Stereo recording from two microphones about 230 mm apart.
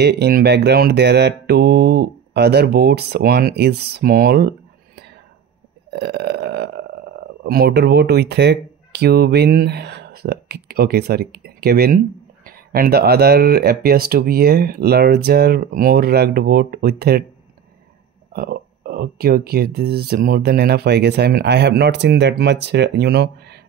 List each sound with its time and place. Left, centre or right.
0.0 s speech: right
18.3 s speech: right